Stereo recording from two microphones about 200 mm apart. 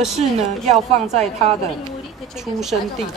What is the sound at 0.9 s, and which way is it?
Speech, 35° right (ahead or behind).